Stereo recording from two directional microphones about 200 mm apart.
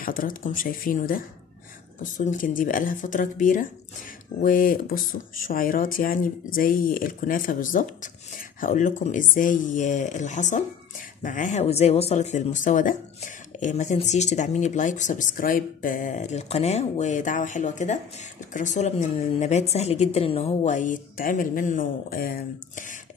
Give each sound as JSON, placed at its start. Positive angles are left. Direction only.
{"t": 0.0, "sound": "speech", "side_deg": 45}